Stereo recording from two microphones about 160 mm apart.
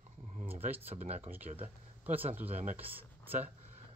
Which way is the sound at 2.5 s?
45° right (ahead or behind).